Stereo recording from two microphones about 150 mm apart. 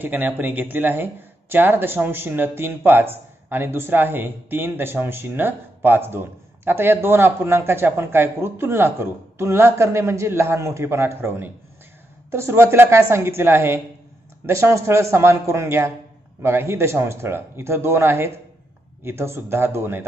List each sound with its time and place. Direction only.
0.0 s speech: 10° right (ahead or behind)